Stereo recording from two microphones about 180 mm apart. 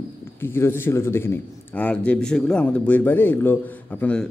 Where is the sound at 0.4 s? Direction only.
15° left (ahead or behind).